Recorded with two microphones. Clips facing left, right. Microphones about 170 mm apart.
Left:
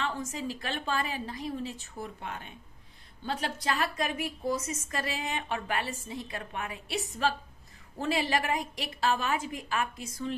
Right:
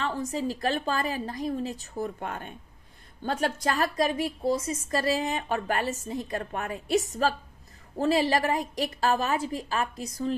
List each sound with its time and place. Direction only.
0.0 s a woman's voice: 35° right (ahead or behind)